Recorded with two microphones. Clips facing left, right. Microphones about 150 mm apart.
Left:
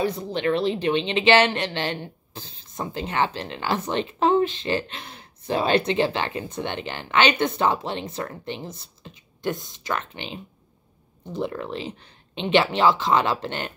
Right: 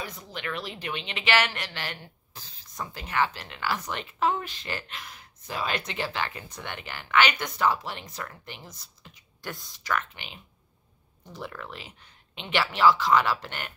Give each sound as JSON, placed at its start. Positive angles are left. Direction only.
{"t": 0.0, "sound": "speech", "side_deg": 30}